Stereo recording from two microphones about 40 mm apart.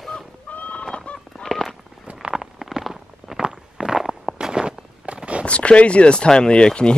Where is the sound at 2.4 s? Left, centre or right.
Centre.